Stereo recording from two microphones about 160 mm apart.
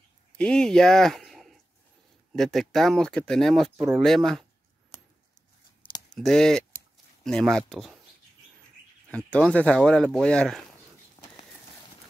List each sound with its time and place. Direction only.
0.4 s speech: 5° left (ahead or behind)
5.8 s clicking: 30° left (ahead or behind)
6.1 s speech: 5° left (ahead or behind)
9.1 s speech: 5° left (ahead or behind)